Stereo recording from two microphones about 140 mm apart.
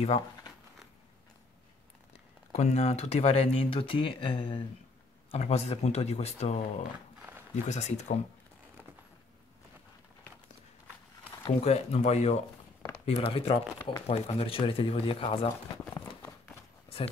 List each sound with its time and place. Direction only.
2.5 s speech: 50° left (ahead or behind); by 4.6 s 35° left (ahead or behind)
5.3 s speech: 50° left (ahead or behind)
7.2 s a sound: 15° right (ahead or behind)
7.6 s speech: 55° left (ahead or behind)
11.4 s speech: 50° left (ahead or behind)